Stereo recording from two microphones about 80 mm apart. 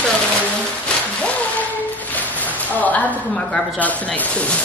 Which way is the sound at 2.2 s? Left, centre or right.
Centre.